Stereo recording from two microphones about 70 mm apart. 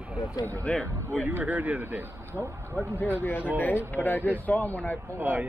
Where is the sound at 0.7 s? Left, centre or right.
Centre.